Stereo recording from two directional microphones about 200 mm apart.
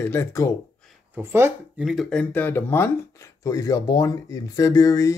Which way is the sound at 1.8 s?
Centre (ahead or behind).